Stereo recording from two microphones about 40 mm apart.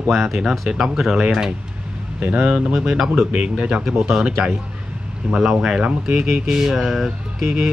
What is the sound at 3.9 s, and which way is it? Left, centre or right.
Speech, centre.